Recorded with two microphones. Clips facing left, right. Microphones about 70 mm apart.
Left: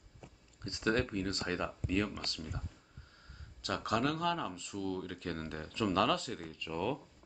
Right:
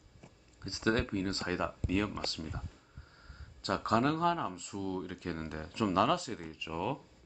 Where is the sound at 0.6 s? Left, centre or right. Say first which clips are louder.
Right 1 dB; right.